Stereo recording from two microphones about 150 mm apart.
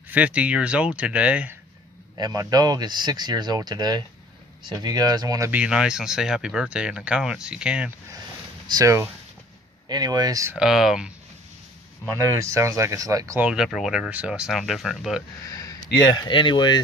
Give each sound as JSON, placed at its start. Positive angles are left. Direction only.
{"t": 0.1, "sound": "speech", "side_deg": -10}
{"t": 2.1, "sound": "speech", "side_deg": -25}
{"t": 5.5, "sound": "speech", "side_deg": -5}
{"t": 8.7, "sound": "speech", "side_deg": -20}
{"t": 10.5, "sound": "speech", "side_deg": -5}
{"t": 12.2, "sound": "speech", "side_deg": -20}
{"t": 13.4, "sound": "speech", "side_deg": -5}
{"t": 15.4, "sound": "speech", "side_deg": 20}